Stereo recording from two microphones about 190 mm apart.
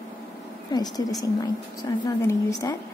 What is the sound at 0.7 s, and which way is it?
A woman's voice, 20° left (ahead or behind).